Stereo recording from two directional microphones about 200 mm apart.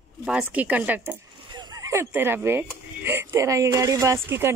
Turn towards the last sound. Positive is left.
turn(degrees=-15)  # may be behind; listen again after turning